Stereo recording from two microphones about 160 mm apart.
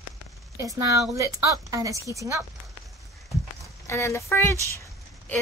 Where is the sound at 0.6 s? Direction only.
20° right (ahead or behind).